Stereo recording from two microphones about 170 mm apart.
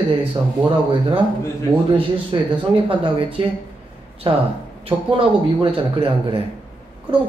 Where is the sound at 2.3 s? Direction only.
25° right (ahead or behind).